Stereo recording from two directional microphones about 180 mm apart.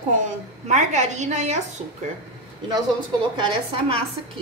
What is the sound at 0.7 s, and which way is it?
Speech, 40° right (ahead or behind).